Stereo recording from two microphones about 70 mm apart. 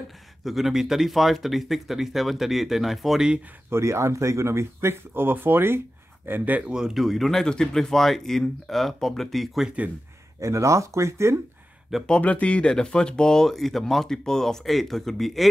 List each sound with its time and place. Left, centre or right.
0.4 s speech: centre
3.7 s speech: right
6.7 s speech: centre
10.4 s speech: right
12.1 s speech: centre